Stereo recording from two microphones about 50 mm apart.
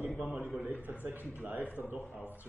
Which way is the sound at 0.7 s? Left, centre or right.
Right.